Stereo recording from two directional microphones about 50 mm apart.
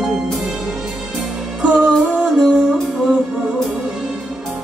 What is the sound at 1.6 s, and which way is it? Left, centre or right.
Music, right.